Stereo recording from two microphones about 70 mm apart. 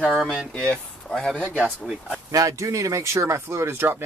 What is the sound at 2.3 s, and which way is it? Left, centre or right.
Speech, right.